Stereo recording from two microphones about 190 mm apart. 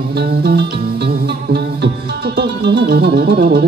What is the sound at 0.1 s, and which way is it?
Music, 60° right (ahead or behind).